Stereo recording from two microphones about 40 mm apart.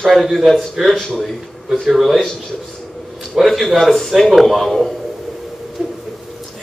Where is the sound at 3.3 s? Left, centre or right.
Centre.